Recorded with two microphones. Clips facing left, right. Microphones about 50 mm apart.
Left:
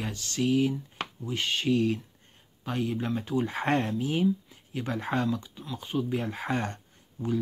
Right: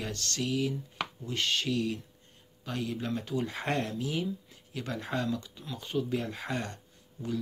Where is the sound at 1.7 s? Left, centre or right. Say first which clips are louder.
Left 6 dB; left.